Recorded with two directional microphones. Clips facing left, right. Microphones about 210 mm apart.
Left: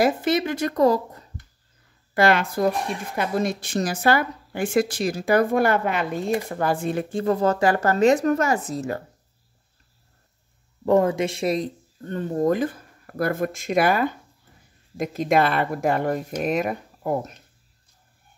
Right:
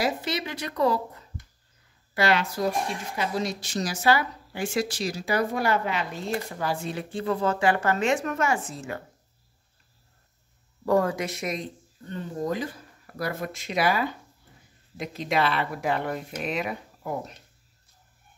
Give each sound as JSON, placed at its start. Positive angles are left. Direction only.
{"t": 0.0, "sound": "a woman's voice", "side_deg": 50}
{"t": 10.9, "sound": "speech", "side_deg": 20}
{"t": 12.0, "sound": "a woman's voice", "side_deg": 50}